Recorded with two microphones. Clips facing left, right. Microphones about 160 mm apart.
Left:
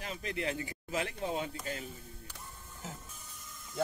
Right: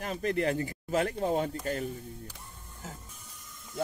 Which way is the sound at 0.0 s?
50° right (ahead or behind).